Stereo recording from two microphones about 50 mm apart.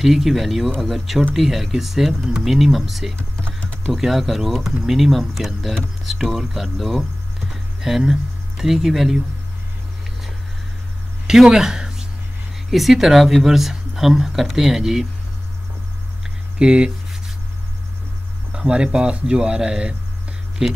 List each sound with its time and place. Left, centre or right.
0.0 s speech: centre
8.1 s speech: centre
11.2 s a sound: centre
12.7 s speech: centre
16.5 s a sound: centre
18.5 s speech: centre